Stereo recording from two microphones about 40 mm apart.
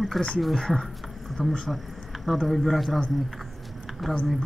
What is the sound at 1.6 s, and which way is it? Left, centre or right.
A man's voice, centre.